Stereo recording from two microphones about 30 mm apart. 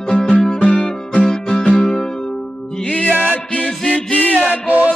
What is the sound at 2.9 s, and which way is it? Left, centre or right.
Music, left.